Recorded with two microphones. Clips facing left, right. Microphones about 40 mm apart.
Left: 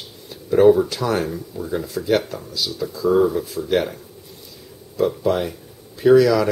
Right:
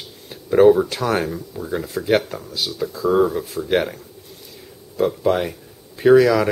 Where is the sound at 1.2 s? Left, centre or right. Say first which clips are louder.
Even; centre.